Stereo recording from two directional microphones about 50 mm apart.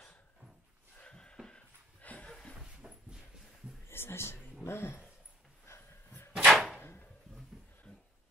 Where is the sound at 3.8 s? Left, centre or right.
Left.